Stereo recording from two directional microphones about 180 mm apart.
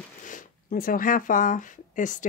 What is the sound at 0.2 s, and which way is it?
Speech, 45° left (ahead or behind).